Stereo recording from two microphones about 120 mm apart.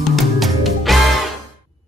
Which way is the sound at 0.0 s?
Centre (ahead or behind).